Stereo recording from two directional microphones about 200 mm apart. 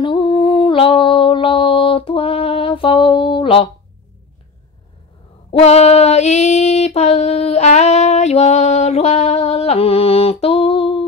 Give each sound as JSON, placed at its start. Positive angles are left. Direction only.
{"t": 0.0, "sound": "music", "side_deg": 25}
{"t": 5.5, "sound": "female singing", "side_deg": 35}